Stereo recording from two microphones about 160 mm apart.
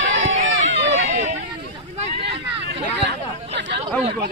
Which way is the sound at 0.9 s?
45° right (ahead or behind).